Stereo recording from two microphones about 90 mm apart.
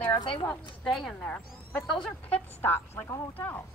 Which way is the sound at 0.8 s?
5° left (ahead or behind).